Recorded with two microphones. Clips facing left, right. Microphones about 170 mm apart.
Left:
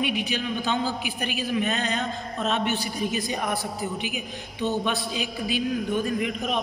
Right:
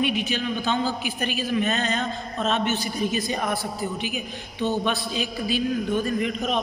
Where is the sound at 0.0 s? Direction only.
15° left (ahead or behind).